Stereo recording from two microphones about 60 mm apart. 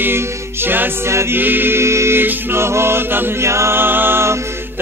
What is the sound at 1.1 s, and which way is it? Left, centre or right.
Music, right.